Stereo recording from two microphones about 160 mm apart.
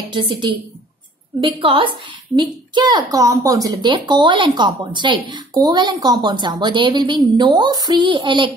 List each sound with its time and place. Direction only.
0.1 s a woman's voice: 30° right (ahead or behind)